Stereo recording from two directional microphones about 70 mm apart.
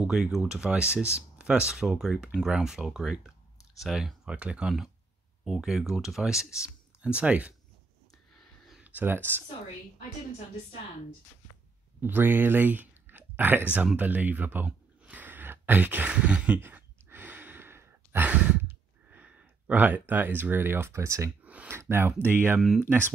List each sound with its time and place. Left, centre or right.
0.0 s speech: centre
7.0 s speech: centre
8.8 s speech: right
12.0 s speech: right
16.5 s sigh: right
18.3 s a sound: right
19.8 s speech: right